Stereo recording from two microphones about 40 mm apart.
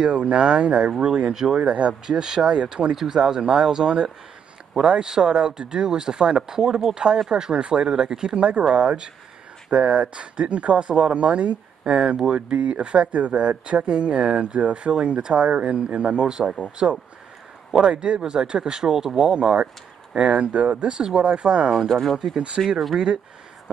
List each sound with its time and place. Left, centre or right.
0.0 s speech: right
1.0 s speech: centre
1.6 s speech: right
2.0 s speech: centre
19.3 s speech: right
21.8 s speech: centre
22.9 s speech: centre